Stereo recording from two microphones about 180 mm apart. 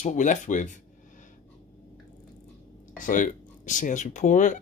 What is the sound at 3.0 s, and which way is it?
Speech, 45° left (ahead or behind).